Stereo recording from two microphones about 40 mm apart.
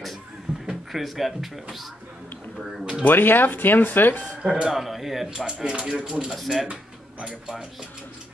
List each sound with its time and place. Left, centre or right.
0.5 s a sound: centre
0.9 s speech: centre
3.0 s speech: left
4.4 s speech: right
4.6 s speech: centre
5.3 s speech: centre
6.3 s speech: centre